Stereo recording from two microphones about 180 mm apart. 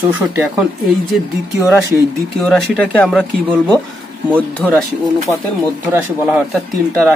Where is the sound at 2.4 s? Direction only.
5° left (ahead or behind).